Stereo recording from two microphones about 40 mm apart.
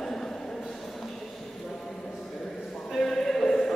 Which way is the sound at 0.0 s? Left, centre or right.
Centre.